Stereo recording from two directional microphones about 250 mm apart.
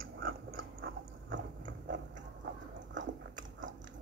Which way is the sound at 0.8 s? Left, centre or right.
Right.